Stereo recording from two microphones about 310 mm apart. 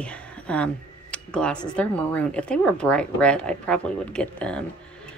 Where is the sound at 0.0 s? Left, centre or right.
Centre.